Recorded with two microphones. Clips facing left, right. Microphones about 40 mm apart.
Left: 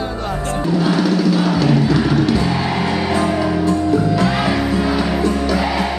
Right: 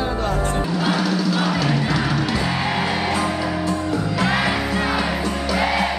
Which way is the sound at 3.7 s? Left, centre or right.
Centre.